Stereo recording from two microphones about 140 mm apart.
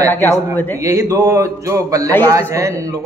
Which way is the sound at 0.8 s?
20° right (ahead or behind).